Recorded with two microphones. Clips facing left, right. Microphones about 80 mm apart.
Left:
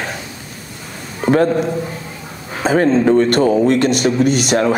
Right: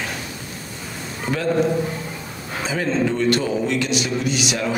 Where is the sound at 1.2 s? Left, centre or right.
Left.